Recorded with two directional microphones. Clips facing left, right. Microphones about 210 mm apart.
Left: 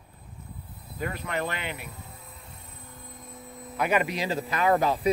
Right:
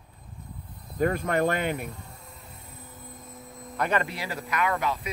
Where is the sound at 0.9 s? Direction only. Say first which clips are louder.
Right 7 dB; 45° right (ahead or behind).